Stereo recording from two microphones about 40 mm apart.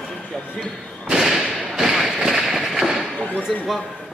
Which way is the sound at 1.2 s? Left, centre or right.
Centre.